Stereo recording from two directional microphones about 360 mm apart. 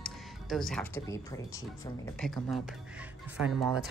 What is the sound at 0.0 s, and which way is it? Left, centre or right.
Speech, centre.